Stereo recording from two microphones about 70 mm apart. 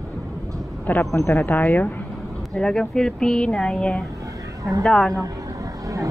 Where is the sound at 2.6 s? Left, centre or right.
Centre.